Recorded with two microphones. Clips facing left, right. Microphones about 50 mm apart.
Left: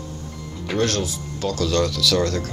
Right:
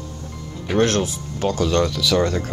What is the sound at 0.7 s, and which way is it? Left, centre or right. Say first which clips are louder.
Speech: right 4 dB; right.